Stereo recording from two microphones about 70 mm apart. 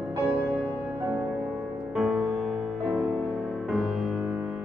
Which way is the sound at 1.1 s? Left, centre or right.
Right.